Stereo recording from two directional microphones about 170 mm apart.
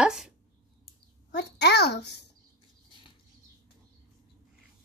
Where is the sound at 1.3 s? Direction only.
75° left (ahead or behind).